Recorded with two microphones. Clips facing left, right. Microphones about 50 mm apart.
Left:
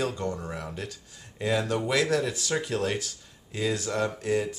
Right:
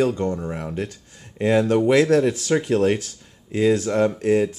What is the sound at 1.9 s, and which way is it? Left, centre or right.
Speech, right.